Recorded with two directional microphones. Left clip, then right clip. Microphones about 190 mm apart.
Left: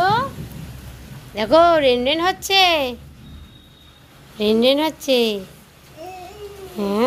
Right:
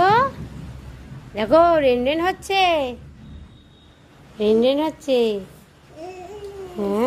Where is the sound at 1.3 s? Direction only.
5° right (ahead or behind).